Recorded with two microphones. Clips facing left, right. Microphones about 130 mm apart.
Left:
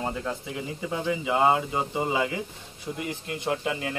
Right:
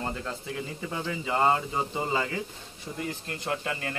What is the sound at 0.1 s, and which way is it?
Speech, 5° left (ahead or behind).